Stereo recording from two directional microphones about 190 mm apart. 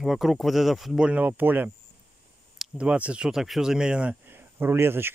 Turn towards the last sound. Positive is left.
turn(degrees=-10)  # may be behind; listen again after turning